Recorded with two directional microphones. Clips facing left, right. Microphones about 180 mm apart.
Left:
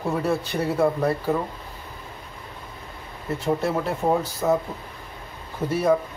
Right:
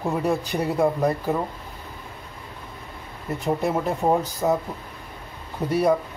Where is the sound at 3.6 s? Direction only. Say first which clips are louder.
Right 1 dB; 15° right (ahead or behind).